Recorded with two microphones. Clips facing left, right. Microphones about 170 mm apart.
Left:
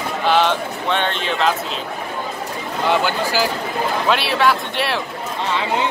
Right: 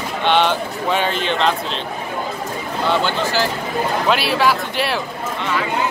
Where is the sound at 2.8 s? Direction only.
10° left (ahead or behind).